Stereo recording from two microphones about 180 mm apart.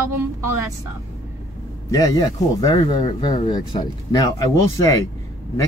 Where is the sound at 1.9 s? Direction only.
20° left (ahead or behind).